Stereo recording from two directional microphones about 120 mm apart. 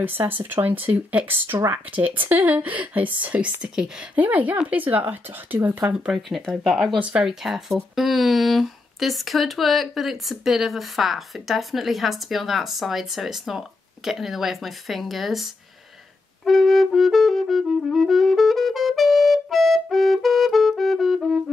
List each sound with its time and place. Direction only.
0.0 s speech: 15° right (ahead or behind); by 21.4 s centre (ahead or behind)